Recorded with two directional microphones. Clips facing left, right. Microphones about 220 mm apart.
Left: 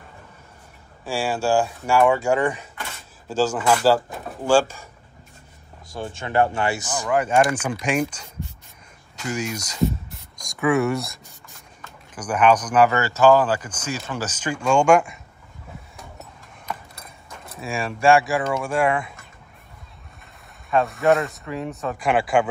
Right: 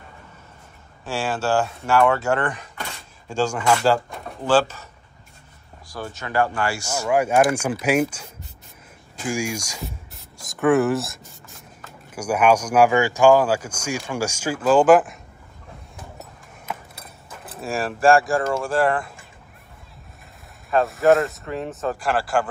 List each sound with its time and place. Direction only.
1.0 s speech: 10° left (ahead or behind)
5.9 s speech: 25° left (ahead or behind)
7.1 s speech: 10° right (ahead or behind)
9.8 s writing: centre (ahead or behind)
12.2 s speech: 10° right (ahead or behind)
16.6 s keys jangling: 5° right (ahead or behind)
20.7 s speech: centre (ahead or behind)